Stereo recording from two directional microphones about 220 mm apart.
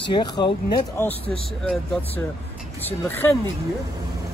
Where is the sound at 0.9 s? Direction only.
10° left (ahead or behind).